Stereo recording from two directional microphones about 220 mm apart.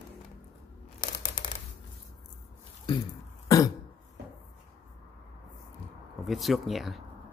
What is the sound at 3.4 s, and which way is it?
Cough, 15° left (ahead or behind).